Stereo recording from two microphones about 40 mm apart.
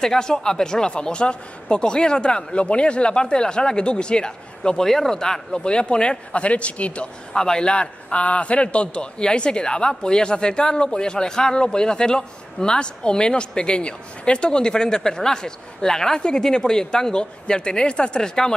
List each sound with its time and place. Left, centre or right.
0.0 s a man's voice: centre
4.8 s a man's voice: centre; by 7.1 s left
7.3 s speech: centre
7.6 s a man's voice: left